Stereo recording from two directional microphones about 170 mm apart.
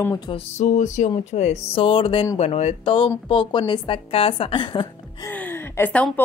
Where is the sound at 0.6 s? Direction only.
45° left (ahead or behind).